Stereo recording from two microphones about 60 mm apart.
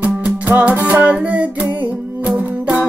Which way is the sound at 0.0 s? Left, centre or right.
Right.